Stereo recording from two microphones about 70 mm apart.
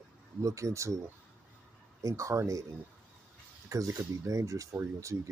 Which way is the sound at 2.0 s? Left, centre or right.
Right.